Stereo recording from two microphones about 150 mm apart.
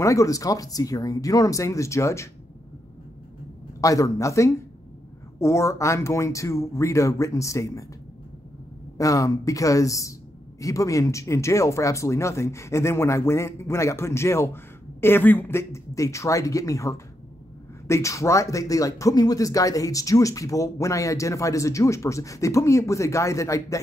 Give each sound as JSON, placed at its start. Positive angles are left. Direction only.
{"t": 0.0, "sound": "speech", "side_deg": 20}
{"t": 3.8, "sound": "speech", "side_deg": 20}
{"t": 8.9, "sound": "speech", "side_deg": 20}